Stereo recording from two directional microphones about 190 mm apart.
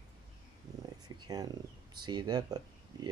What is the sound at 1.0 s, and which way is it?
Speech, 20° right (ahead or behind).